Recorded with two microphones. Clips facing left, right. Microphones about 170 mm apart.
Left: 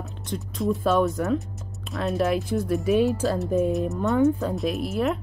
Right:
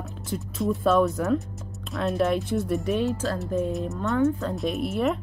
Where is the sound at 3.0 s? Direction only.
15° left (ahead or behind).